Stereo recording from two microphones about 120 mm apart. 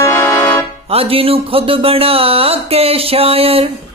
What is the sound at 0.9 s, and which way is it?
Speech, 50° right (ahead or behind).